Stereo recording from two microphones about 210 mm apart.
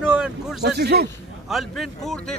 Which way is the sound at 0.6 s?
50° right (ahead or behind).